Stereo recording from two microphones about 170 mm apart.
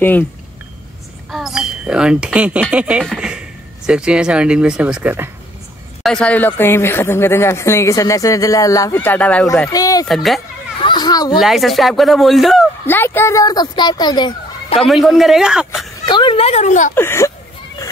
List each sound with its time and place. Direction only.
1.3 s speech: 5° right (ahead or behind)
6.0 s speech: 5° left (ahead or behind)
9.7 s speech: 20° left (ahead or behind)
10.0 s speech: centre (ahead or behind)
10.8 s a child's voice: 25° left (ahead or behind)
11.3 s speech: centre (ahead or behind)
12.8 s speech: 10° left (ahead or behind)
14.8 s speech: centre (ahead or behind)
16.1 s a sound: 30° left (ahead or behind); by 16.9 s 45° left (ahead or behind)
16.9 s speech: 15° left (ahead or behind)